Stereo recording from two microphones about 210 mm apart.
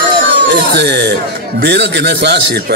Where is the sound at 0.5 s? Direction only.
55° right (ahead or behind).